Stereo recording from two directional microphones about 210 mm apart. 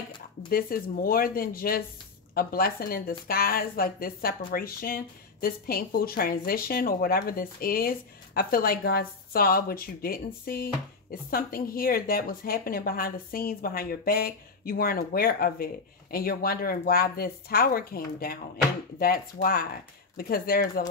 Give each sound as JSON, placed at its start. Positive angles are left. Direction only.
{"t": 0.5, "sound": "a woman's voice", "side_deg": 45}